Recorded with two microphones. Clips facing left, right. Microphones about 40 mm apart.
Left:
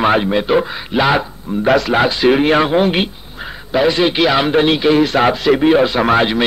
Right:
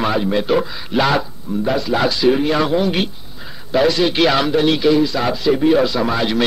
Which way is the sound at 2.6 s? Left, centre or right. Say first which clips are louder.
Left 3 dB; left.